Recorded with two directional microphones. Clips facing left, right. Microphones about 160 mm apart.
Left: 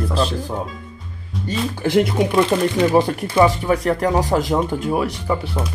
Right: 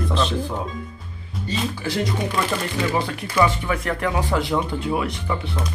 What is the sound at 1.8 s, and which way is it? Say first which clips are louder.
Speech: left 13 dB; 55° left (ahead or behind).